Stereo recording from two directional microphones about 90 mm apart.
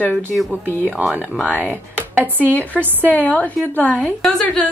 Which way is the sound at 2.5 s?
15° left (ahead or behind).